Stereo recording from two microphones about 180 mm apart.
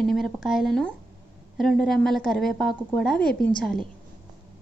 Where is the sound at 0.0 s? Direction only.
Centre (ahead or behind).